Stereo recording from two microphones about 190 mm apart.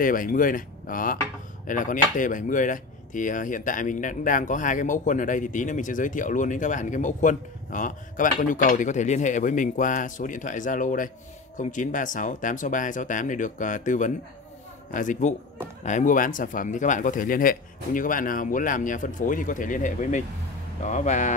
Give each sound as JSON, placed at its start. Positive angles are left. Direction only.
{"t": 0.0, "sound": "a man's voice", "side_deg": 45}